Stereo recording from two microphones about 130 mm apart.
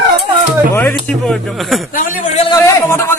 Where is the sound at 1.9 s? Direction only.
90° left.